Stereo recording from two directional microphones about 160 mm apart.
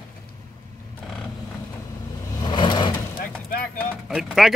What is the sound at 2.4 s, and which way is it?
Vehicle, 30° left (ahead or behind).